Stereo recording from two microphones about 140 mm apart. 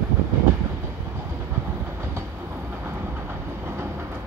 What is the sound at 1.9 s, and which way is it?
Train, 15° right (ahead or behind).